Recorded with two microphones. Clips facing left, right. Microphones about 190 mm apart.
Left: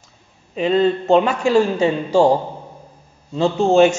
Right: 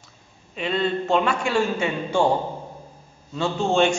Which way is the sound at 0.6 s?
40° left (ahead or behind).